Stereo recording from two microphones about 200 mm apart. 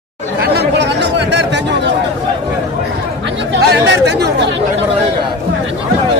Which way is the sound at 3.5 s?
60° right (ahead or behind).